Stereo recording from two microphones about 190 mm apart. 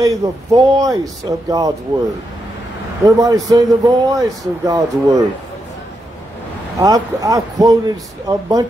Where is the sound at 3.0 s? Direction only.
20° right (ahead or behind).